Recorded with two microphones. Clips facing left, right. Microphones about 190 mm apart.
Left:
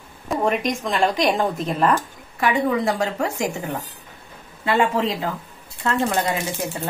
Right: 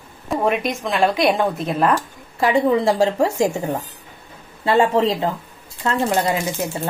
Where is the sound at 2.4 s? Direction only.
30° right (ahead or behind).